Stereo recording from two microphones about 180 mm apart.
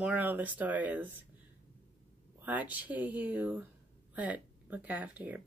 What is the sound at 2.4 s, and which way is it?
Speech, 10° right (ahead or behind).